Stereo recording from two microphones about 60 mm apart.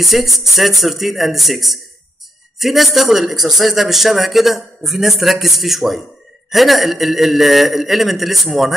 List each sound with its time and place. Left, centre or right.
0.0 s speech: centre